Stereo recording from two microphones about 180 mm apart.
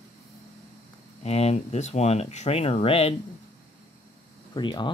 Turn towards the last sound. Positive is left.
turn(degrees=25)  # may be behind; listen again after turning